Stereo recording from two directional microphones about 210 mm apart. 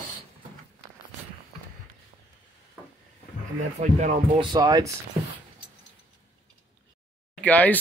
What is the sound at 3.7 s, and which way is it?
Speech, 35° right (ahead or behind).